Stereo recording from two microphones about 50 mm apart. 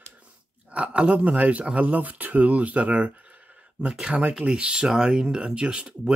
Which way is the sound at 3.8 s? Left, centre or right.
Centre.